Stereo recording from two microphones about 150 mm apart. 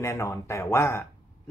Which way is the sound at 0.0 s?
20° left (ahead or behind).